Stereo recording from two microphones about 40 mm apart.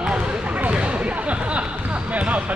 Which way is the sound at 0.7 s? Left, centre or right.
Right.